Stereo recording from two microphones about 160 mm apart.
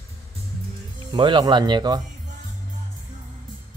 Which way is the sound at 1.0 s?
30° right (ahead or behind).